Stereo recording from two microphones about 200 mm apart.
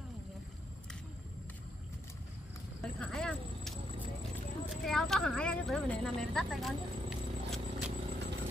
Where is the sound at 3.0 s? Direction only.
5° left (ahead or behind).